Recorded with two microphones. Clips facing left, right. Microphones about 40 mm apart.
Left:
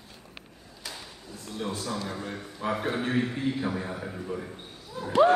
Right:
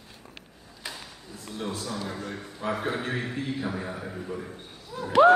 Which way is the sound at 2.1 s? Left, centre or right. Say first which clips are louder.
Even; centre.